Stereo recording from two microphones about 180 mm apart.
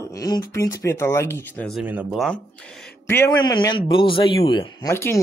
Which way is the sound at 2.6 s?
5° left (ahead or behind).